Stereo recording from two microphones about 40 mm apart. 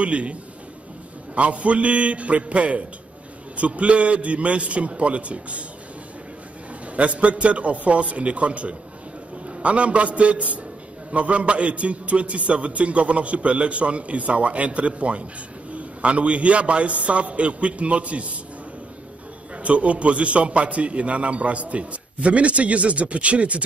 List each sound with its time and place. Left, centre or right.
0.0 s a man's voice: right
7.0 s a man's voice: right
19.5 s a man's voice: right